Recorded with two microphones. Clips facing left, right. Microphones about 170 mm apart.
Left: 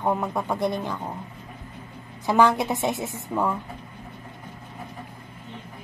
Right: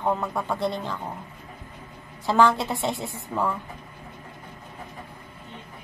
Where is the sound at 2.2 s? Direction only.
15° left (ahead or behind).